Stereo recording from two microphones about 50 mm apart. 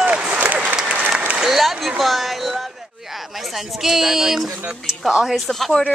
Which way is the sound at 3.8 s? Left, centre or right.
Centre.